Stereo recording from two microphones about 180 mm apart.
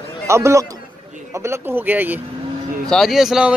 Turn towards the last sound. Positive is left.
turn(degrees=0)  # may be behind; listen again after turning